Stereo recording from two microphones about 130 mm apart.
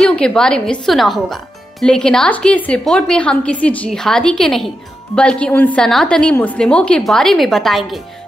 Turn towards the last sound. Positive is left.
turn(degrees=0)  # may be behind; listen again after turning